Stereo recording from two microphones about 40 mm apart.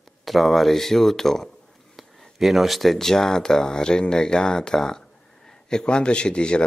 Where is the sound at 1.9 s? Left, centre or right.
Centre; by 6.6 s left.